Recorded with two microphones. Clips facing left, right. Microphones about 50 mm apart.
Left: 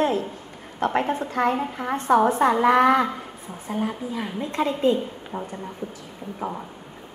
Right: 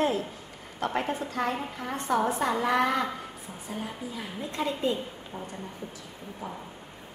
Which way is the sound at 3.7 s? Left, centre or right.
Left.